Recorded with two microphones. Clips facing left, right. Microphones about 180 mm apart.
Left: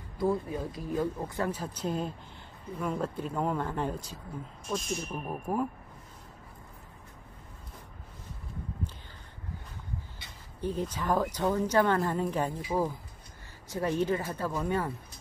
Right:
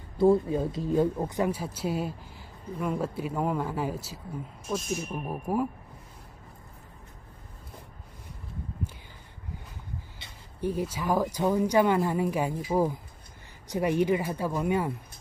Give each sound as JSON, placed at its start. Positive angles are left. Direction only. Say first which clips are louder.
{"t": 0.2, "sound": "speech", "louder": "right 7 dB", "side_deg": -30}
{"t": 10.6, "sound": "speech", "louder": "right 3 dB", "side_deg": -10}